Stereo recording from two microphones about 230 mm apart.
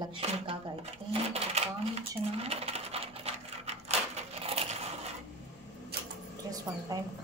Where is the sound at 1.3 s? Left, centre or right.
Right.